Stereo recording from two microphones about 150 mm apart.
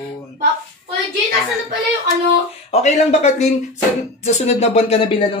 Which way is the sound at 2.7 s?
50° left (ahead or behind).